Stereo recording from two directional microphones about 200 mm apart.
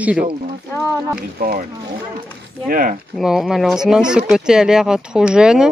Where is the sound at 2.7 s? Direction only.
45° right (ahead or behind).